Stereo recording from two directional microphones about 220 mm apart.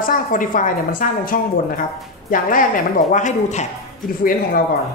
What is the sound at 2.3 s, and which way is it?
A woman's voice, 40° left (ahead or behind).